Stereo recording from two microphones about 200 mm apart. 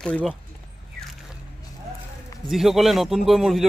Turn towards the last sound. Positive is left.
turn(degrees=0)  # may be behind; listen again after turning